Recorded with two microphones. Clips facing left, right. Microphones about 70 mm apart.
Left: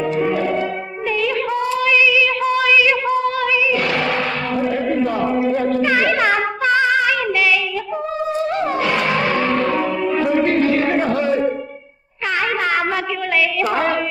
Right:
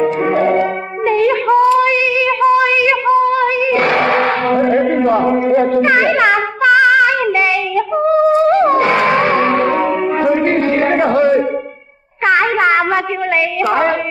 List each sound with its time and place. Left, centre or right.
0.0 s music: right
6.7 s female singing: right
8.5 s music: right
12.3 s a sound: right